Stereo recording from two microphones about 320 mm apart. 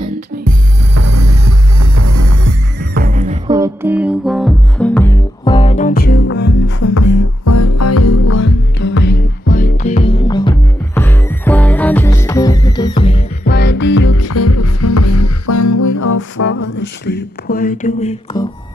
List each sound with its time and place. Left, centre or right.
0.9 s music: right
2.8 s music: right
3.5 s music: centre; by 6.7 s left
7.0 s music: left
8.4 s music: left; by 13.2 s centre
13.5 s music: left
14.1 s music: left
16.2 s a sound: left